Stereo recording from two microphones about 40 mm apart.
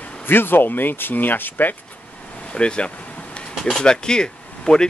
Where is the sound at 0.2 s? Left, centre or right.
Left.